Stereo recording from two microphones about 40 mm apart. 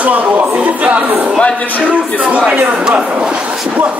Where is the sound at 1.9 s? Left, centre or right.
Right.